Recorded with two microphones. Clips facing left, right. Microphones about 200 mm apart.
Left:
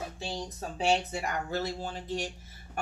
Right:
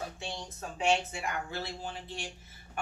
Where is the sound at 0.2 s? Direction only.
35° left (ahead or behind).